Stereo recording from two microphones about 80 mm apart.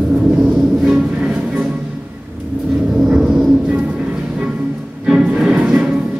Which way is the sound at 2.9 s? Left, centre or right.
Centre.